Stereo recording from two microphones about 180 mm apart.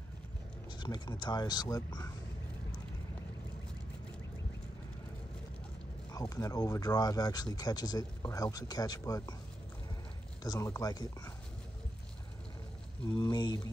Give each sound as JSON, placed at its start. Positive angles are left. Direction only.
{"t": 0.7, "sound": "speech", "side_deg": 25}
{"t": 6.1, "sound": "speech", "side_deg": 20}
{"t": 10.4, "sound": "speech", "side_deg": 20}
{"t": 13.1, "sound": "speech", "side_deg": 25}